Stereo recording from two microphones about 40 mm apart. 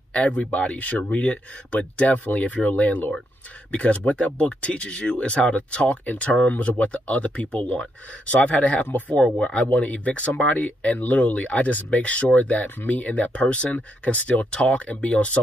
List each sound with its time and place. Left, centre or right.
0.1 s speech: left
9.2 s speech: centre
9.7 s speech: left